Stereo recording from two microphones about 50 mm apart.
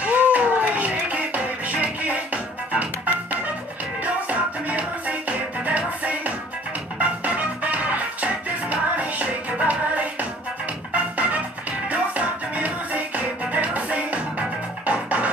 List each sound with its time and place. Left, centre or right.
0.0 s music: right